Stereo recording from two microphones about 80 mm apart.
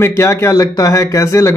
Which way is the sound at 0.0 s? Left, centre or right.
Left.